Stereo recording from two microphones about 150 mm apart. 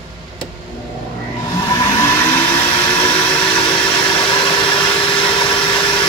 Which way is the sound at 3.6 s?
35° left (ahead or behind).